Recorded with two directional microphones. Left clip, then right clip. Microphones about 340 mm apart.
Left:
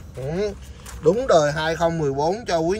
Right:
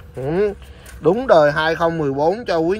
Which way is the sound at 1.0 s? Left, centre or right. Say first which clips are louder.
Right 4 dB; centre.